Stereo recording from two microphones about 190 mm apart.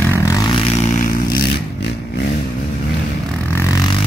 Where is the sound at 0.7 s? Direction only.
45° left (ahead or behind).